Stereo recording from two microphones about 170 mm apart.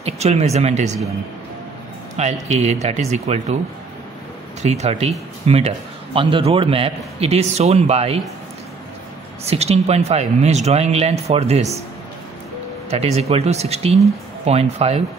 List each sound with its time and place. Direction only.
0.0 s a man's voice: 40° right (ahead or behind)
2.1 s a man's voice: 40° right (ahead or behind)
4.6 s a man's voice: 40° right (ahead or behind)
9.5 s a man's voice: 40° right (ahead or behind)
12.9 s a man's voice: 40° right (ahead or behind)